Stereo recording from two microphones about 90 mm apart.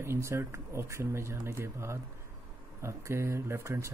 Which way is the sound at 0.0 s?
30° right (ahead or behind).